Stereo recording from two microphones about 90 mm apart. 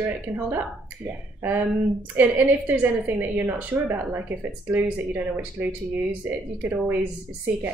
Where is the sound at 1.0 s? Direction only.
20° right (ahead or behind).